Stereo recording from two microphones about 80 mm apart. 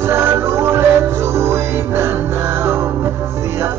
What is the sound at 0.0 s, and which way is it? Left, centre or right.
Music, right.